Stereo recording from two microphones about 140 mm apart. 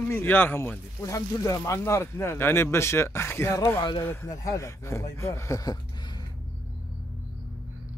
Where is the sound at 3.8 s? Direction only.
35° left (ahead or behind).